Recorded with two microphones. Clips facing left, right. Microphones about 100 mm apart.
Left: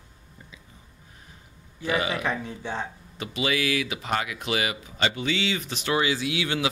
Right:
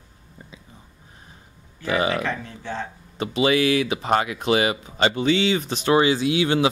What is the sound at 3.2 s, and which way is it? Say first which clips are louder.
Speech: right 7 dB; 30° right (ahead or behind).